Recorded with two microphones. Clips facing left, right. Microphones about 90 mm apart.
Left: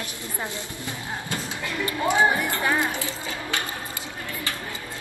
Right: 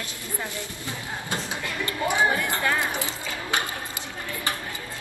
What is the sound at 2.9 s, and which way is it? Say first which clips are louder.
Speech: even; 20° right (ahead or behind).